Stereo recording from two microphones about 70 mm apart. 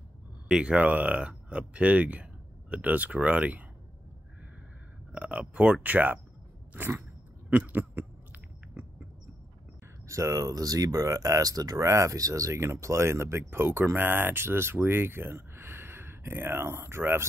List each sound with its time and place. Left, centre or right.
0.5 s speech: centre
5.1 s speech: centre
6.7 s a sound: right
10.0 s speech: right